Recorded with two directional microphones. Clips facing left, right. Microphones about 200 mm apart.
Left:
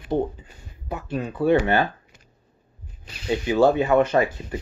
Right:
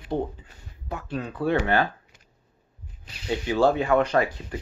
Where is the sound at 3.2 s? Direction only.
15° left (ahead or behind).